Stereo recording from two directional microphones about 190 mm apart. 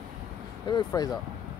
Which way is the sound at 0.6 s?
20° left (ahead or behind).